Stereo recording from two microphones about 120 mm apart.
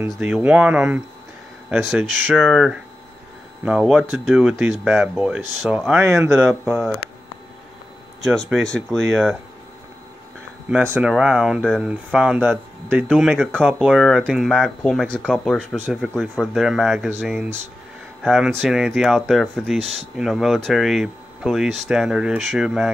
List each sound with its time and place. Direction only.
0.0 s speech: 10° right (ahead or behind)
5.9 s speech: 25° right (ahead or behind)
8.2 s speech: centre (ahead or behind)
10.8 s speech: 20° right (ahead or behind)
11.1 s speech: 5° right (ahead or behind)